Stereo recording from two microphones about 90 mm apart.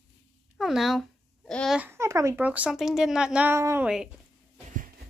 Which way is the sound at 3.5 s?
30° right (ahead or behind).